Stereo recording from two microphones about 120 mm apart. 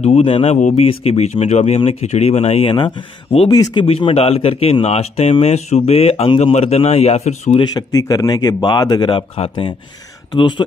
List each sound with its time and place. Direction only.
0.0 s speech: 60° left (ahead or behind)
0.6 s speech: 90° left
0.8 s speech: 60° left (ahead or behind)
6.4 s speech: 65° left (ahead or behind)
7.5 s speech: 35° left (ahead or behind)